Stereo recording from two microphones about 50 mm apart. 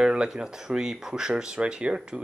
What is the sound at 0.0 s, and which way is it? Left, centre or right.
Speech, centre.